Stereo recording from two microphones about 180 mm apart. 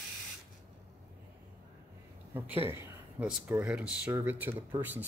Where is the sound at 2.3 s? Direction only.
10° right (ahead or behind).